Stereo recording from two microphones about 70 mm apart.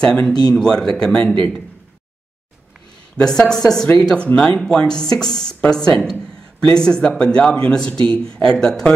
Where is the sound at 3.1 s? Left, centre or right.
Centre.